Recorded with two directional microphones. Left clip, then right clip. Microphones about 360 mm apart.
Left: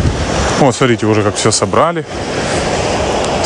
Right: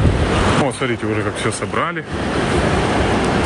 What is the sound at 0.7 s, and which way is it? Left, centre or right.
Speech, centre.